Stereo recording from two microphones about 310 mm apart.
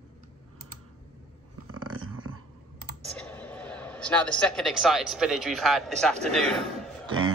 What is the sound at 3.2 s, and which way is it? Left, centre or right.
A man's voice, centre.